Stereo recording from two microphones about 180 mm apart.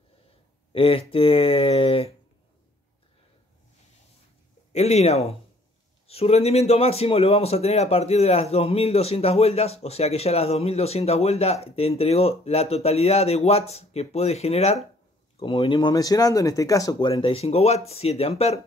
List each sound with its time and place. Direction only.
0.7 s speech: 30° left (ahead or behind)
4.7 s speech: 35° left (ahead or behind)